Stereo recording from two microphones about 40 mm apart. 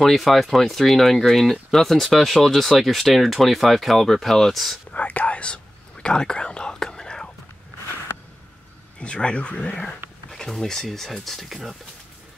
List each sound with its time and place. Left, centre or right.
0.0 s speech: centre
4.9 s whispering: left
5.4 s whispering: left
9.0 s speech: left
10.5 s speech: centre
11.4 s speech: centre